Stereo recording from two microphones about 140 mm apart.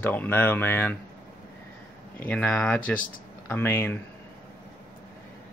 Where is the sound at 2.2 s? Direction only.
10° left (ahead or behind).